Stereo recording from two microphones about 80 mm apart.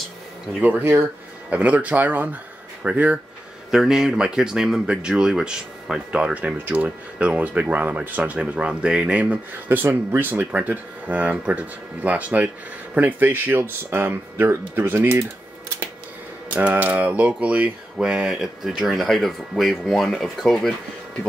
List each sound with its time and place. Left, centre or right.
0.6 s speech: right
16.4 s speech: centre